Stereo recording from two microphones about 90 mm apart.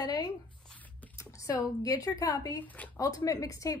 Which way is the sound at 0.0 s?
50° left (ahead or behind).